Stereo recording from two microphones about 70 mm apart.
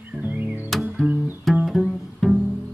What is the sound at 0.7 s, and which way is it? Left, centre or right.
Music, centre.